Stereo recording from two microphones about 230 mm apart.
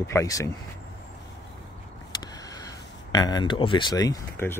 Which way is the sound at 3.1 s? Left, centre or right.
Centre.